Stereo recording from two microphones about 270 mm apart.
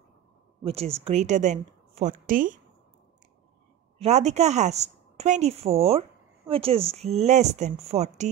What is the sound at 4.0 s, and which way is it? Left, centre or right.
A woman's voice, right.